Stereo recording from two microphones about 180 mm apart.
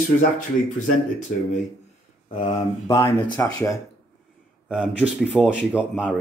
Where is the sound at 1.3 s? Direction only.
60° left (ahead or behind).